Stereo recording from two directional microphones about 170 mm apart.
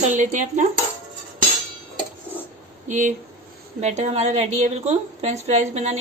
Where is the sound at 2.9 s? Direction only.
45° right (ahead or behind).